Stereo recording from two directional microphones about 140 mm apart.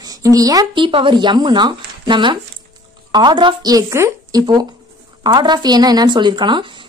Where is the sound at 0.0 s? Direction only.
25° right (ahead or behind).